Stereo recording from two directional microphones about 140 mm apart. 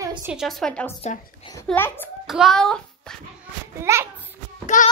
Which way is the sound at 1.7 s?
15° left (ahead or behind).